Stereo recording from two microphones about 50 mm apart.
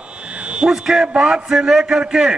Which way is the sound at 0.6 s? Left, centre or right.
Centre.